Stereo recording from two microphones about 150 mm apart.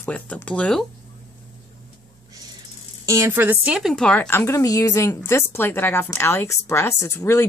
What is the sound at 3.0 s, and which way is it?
Speech, 20° right (ahead or behind).